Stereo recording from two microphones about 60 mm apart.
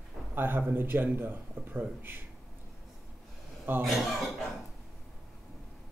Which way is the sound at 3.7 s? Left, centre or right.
Right.